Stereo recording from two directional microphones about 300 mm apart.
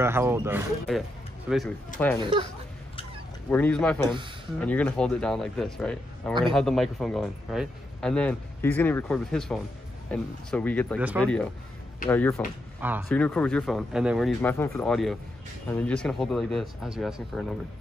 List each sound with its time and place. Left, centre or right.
0.0 s speech: centre
2.1 s speech: centre
3.4 s speech: centre